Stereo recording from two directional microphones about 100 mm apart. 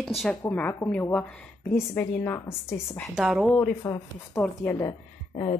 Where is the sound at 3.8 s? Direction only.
25° left (ahead or behind).